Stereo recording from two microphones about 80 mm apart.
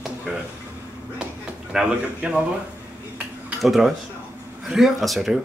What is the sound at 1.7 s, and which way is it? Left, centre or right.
Speech, centre.